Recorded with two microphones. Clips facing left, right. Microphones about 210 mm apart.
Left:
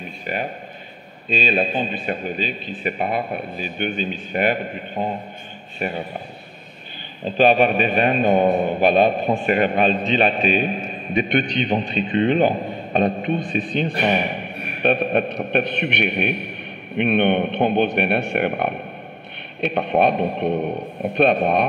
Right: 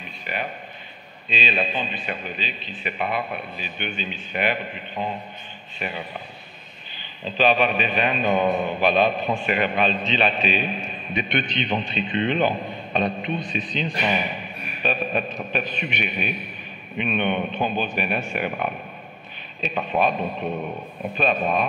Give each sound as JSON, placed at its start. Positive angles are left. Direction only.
{"t": 0.0, "sound": "a sound", "side_deg": 40}
{"t": 1.3, "sound": "a man's voice", "side_deg": 45}
{"t": 7.2, "sound": "a man's voice", "side_deg": 50}
{"t": 20.5, "sound": "speech", "side_deg": 40}
{"t": 21.1, "sound": "speech", "side_deg": 65}